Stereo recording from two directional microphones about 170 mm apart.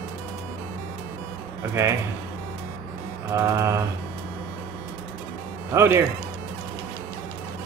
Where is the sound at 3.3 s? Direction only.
15° right (ahead or behind).